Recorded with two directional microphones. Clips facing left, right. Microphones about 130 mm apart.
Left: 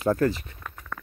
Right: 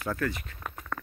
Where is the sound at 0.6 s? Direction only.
10° right (ahead or behind).